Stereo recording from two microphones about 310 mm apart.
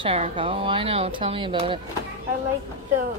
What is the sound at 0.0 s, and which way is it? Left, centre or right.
A woman's voice, centre.